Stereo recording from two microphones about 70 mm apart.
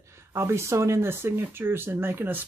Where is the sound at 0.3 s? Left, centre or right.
Right.